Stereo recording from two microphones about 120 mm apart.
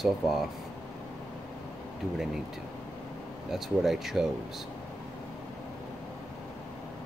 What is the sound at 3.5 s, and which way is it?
Speech, centre (ahead or behind).